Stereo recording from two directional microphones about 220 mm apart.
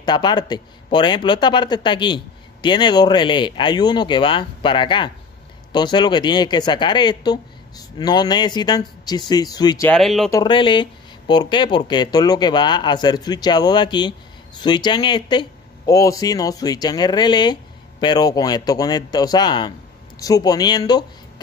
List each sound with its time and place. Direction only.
0.0 s a man's voice: 20° left (ahead or behind)
9.8 s speech: centre (ahead or behind)
10.3 s a man's voice: 20° left (ahead or behind)